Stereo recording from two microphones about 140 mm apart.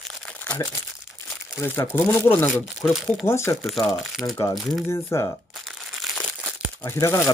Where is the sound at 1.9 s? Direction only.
15° left (ahead or behind).